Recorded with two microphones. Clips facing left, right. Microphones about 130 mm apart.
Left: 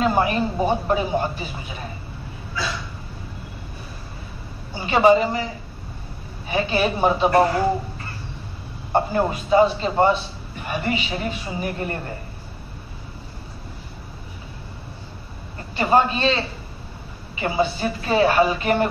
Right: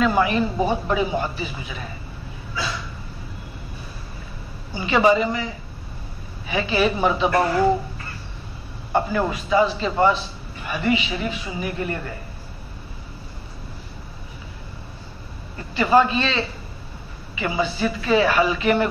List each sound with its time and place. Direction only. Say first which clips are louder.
0.0 s a man's voice: right 1 dB; 45° left (ahead or behind)
4.7 s a woman's voice: left 2 dB; 45° left (ahead or behind)
8.9 s a man's voice: left 1 dB; 45° left (ahead or behind)
15.8 s a man's voice: right 1 dB; 45° left (ahead or behind)
17.4 s a man's voice: left 1 dB; 40° left (ahead or behind)